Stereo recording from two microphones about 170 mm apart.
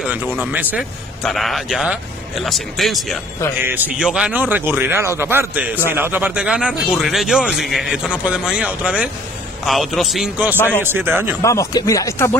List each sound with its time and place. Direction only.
0.1 s a man's voice: 10° right (ahead or behind)
3.6 s a man's voice: 10° right (ahead or behind)
11.4 s speech: 20° left (ahead or behind)